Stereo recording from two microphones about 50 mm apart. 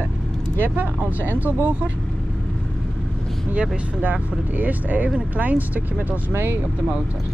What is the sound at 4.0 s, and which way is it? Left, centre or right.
Speech, right.